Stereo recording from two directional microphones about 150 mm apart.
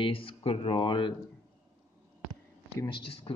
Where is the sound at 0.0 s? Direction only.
35° left (ahead or behind).